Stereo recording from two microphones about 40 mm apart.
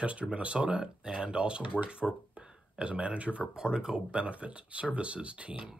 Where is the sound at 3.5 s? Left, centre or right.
Centre.